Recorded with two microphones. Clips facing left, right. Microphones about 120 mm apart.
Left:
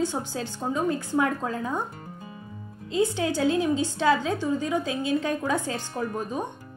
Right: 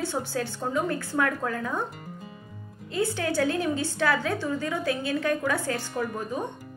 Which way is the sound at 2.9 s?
20° left (ahead or behind).